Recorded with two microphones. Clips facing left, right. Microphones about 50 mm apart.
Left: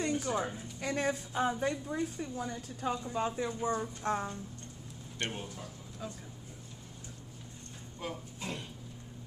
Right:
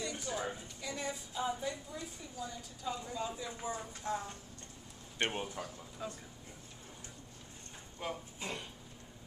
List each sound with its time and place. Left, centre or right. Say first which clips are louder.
0.0 s a sound: left 7 dB; left
0.7 s a woman's voice: left 8 dB; left
5.2 s speech: right 3 dB; right
6.0 s speech: even; centre
8.0 s speech: left 1 dB; centre